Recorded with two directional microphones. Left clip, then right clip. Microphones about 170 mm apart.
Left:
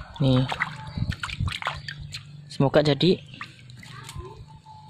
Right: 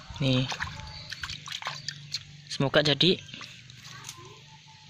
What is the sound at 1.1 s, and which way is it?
Splash, 15° left (ahead or behind).